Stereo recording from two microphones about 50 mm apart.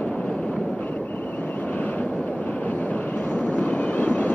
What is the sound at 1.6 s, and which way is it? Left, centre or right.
Vehicle, left.